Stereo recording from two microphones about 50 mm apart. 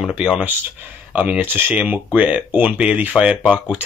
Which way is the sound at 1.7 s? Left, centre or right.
Right.